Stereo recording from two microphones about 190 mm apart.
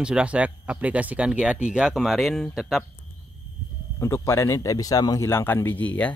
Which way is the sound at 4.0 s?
15° left (ahead or behind).